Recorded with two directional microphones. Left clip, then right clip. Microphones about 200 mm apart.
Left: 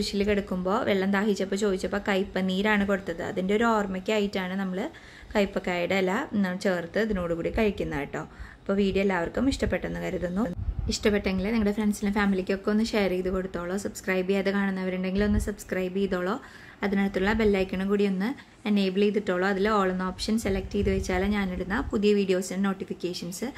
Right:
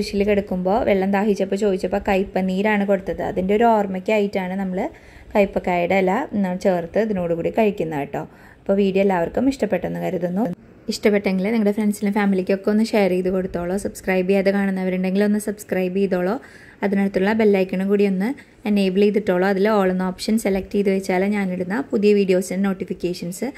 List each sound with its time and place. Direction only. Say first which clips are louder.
0.0 s a woman's voice: right 7 dB; 15° right (ahead or behind)